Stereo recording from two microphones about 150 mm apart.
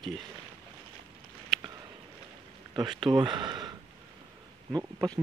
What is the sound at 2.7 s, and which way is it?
Speech, 30° right (ahead or behind).